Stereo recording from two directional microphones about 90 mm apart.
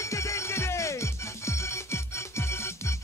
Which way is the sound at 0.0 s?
35° left (ahead or behind).